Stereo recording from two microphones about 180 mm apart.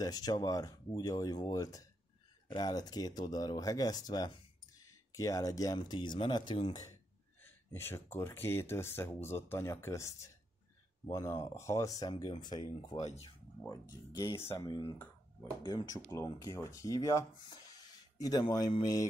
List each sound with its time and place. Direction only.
0.0 s speech: 20° left (ahead or behind)
7.4 s speech: 15° left (ahead or behind)